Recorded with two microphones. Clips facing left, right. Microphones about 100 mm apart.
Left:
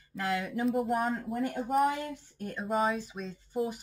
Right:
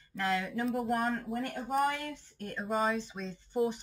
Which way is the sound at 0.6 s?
Centre (ahead or behind).